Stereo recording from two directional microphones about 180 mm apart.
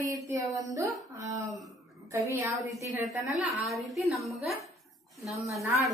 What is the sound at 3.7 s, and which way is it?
Speech, centre (ahead or behind).